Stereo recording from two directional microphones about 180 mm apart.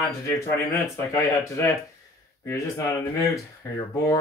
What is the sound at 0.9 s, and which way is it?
Speech, 15° left (ahead or behind).